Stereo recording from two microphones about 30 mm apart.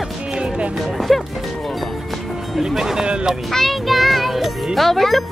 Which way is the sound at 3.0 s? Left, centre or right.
Right.